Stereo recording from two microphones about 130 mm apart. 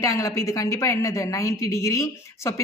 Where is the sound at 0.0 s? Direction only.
25° left (ahead or behind).